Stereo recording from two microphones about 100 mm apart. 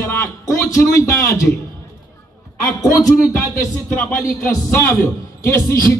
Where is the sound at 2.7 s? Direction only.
35° left (ahead or behind).